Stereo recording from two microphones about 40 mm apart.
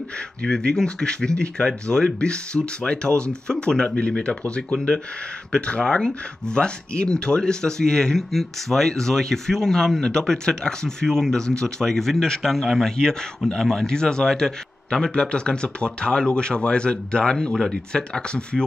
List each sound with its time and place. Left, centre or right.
0.5 s a man's voice: left
4.7 s a man's voice: centre